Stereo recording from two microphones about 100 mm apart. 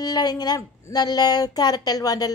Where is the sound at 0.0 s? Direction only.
40° left (ahead or behind).